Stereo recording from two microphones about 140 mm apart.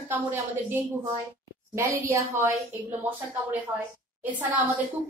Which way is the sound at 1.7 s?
20° right (ahead or behind).